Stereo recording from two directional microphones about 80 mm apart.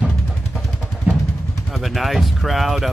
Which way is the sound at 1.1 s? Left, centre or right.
Centre.